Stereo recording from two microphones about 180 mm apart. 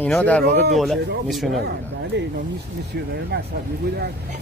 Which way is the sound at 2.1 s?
70° right (ahead or behind).